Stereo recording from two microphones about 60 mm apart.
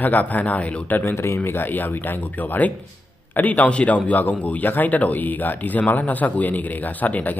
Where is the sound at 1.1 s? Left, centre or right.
Left.